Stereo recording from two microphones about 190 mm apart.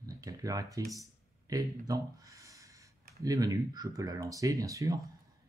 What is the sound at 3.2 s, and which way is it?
Speech, 20° right (ahead or behind).